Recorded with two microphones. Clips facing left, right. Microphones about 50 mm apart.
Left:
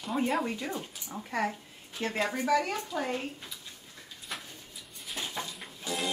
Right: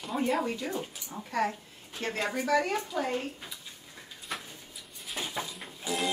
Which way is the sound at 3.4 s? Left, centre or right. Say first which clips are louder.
Right 1 dB; centre.